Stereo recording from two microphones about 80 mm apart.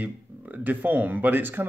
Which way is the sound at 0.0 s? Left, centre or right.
Right.